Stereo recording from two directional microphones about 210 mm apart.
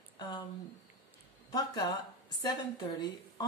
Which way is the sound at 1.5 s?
20° left (ahead or behind).